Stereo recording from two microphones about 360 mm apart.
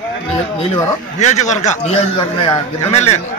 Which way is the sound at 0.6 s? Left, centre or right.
Centre.